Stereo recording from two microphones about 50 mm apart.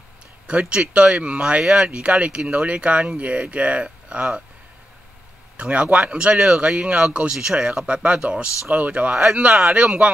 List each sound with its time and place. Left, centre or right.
0.5 s speech: centre
1.6 s speech: centre
1.9 s speech: right
5.6 s speech: right
7.3 s speech: centre